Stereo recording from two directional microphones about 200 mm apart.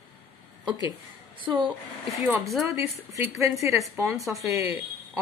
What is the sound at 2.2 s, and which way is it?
Speech, 10° right (ahead or behind).